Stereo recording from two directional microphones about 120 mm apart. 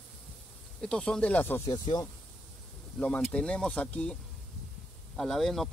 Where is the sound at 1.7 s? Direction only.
35° left (ahead or behind).